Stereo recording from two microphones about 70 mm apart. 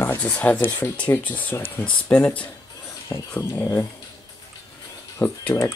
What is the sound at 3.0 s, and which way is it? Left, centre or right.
Speech, left.